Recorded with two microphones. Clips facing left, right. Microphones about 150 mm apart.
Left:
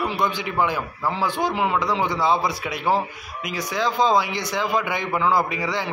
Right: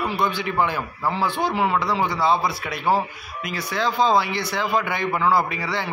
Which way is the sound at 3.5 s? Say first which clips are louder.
Even; 15° left (ahead or behind).